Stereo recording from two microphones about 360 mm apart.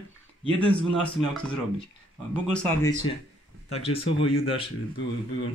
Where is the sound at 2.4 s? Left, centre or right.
Centre.